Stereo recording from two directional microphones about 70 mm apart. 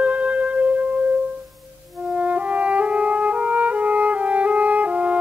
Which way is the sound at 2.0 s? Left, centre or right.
Centre.